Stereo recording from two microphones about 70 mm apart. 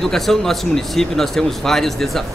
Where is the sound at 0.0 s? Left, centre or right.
Centre.